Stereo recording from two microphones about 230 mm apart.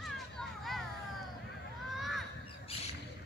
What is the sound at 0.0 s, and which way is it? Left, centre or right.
Children playing, centre.